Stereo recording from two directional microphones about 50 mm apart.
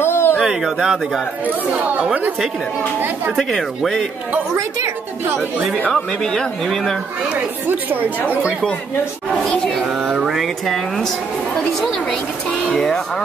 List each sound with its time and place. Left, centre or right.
0.0 s a sound: left
0.4 s speech: centre
3.3 s speech: centre
4.6 s a woman's voice: right
5.9 s speech: centre
7.6 s speech: right
9.8 s speech: centre
12.7 s speech: centre